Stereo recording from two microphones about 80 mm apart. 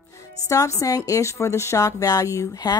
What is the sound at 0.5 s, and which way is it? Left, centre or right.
A woman's voice, left.